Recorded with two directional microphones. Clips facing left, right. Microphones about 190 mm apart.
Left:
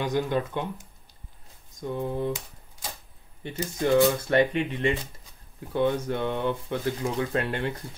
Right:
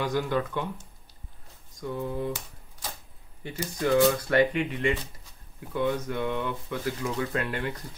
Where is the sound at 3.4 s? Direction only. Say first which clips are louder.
Left 2 dB; 25° left (ahead or behind).